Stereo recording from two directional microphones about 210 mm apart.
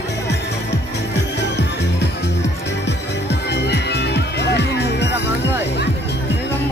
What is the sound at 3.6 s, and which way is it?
Music, 55° left (ahead or behind).